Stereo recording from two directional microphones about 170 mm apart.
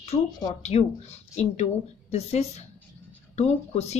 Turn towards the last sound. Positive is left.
turn(degrees=40)  # may be behind; listen again after turning